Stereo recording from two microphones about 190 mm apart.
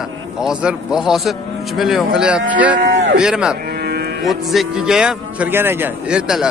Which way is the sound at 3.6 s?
60° right (ahead or behind).